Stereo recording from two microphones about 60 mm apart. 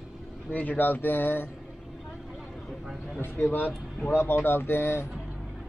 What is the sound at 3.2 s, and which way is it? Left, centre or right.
Speech, left.